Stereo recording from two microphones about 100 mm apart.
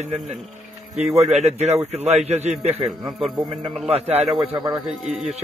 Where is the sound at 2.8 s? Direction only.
Centre (ahead or behind).